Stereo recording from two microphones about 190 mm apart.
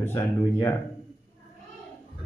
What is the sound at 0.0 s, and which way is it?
Speech, 15° left (ahead or behind).